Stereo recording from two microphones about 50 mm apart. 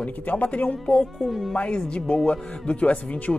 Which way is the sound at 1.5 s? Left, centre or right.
Centre.